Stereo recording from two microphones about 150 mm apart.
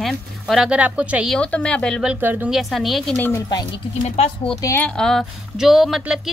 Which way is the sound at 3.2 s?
20° left (ahead or behind).